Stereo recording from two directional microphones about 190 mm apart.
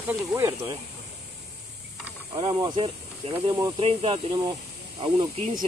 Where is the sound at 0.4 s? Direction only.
15° right (ahead or behind).